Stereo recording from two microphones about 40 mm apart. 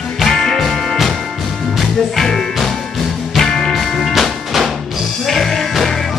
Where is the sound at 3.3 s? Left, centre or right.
Centre.